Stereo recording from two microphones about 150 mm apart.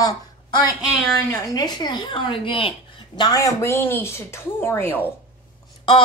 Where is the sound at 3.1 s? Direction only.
25° left (ahead or behind).